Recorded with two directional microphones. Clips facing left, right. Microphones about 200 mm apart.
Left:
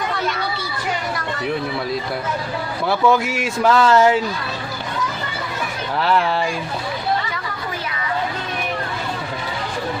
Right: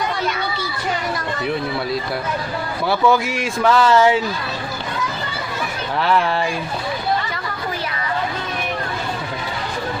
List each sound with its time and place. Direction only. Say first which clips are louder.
2.9 s speech: even; centre (ahead or behind)
5.9 s speech: even; centre (ahead or behind)